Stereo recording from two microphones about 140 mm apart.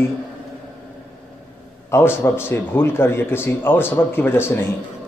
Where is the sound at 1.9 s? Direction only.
15° left (ahead or behind).